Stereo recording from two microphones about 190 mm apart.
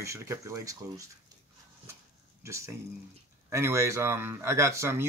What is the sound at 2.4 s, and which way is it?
Speech, 15° right (ahead or behind).